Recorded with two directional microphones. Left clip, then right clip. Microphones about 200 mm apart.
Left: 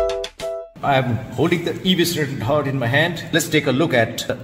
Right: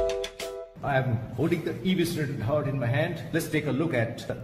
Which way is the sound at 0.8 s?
45° left (ahead or behind).